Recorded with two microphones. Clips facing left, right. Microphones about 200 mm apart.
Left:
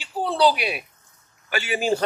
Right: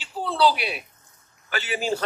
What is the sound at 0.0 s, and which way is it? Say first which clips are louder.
A man's voice: left 2 dB; 15° left (ahead or behind).